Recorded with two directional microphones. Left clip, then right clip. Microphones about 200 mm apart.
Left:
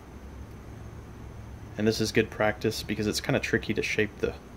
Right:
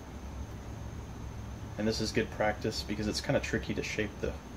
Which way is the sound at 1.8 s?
50° left (ahead or behind).